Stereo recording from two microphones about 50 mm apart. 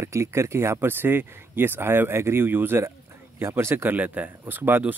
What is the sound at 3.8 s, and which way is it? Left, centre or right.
Speech, right.